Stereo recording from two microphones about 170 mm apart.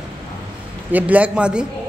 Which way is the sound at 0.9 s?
10° right (ahead or behind).